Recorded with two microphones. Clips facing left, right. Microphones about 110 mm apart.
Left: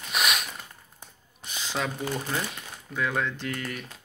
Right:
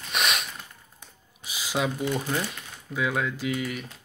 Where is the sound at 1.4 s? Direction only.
5° right (ahead or behind).